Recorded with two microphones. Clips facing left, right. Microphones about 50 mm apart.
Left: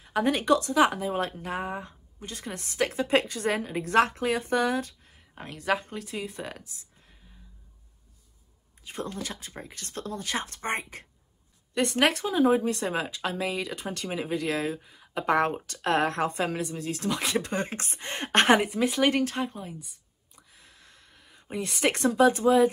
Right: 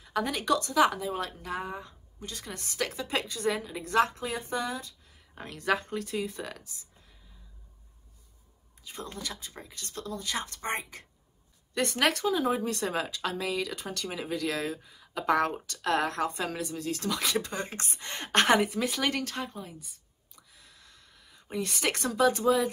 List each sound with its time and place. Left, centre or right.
0.0 s speech: left
5.3 s speech: centre
8.8 s speech: left
11.7 s speech: left
20.3 s whispering: left
21.6 s speech: left